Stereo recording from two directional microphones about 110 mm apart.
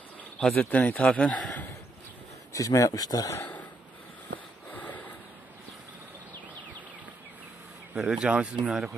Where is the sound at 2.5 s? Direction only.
30° left (ahead or behind).